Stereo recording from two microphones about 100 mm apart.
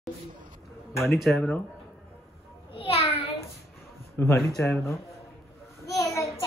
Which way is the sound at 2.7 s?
75° left (ahead or behind).